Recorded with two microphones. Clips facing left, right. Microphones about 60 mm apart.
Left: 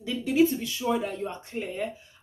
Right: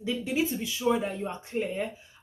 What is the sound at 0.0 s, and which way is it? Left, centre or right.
Speech, centre.